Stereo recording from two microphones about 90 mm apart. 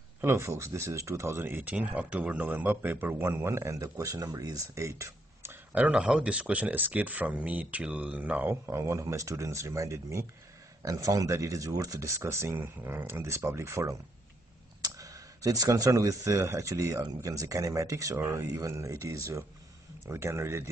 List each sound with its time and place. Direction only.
0.2 s speech: 30° right (ahead or behind)
5.8 s speech: 15° right (ahead or behind); by 20.7 s 30° right (ahead or behind)